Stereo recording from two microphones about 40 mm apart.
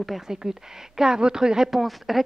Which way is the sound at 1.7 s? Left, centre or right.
Centre.